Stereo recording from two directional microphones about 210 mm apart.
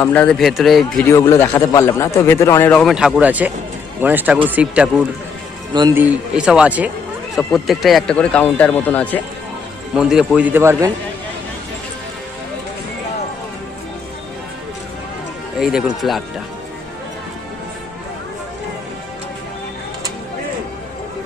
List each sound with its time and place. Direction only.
0.0 s a man's voice: 5° left (ahead or behind)
5.7 s speech: 20° right (ahead or behind)
5.9 s a man's voice: 5° right (ahead or behind)
9.9 s a man's voice: 5° right (ahead or behind)
16.0 s speech: centre (ahead or behind)